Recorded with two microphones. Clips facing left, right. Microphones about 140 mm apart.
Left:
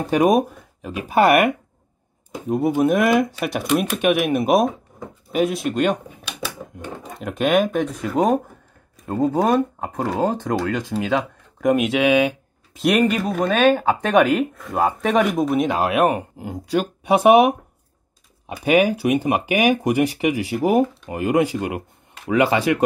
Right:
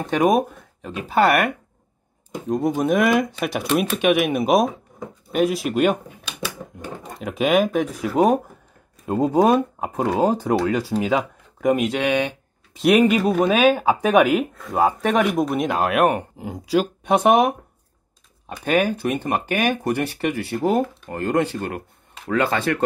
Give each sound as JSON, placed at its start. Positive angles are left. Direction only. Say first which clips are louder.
{"t": 0.0, "sound": "speech", "louder": "left 2 dB", "side_deg": 10}
{"t": 9.1, "sound": "speech", "louder": "right 1 dB", "side_deg": -15}